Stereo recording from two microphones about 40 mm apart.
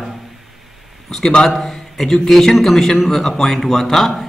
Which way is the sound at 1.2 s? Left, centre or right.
Centre.